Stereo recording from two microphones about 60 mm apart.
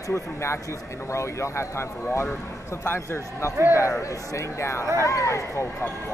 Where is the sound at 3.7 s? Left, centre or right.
Left.